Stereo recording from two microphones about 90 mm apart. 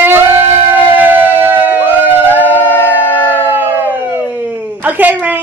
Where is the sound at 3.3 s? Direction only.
25° right (ahead or behind).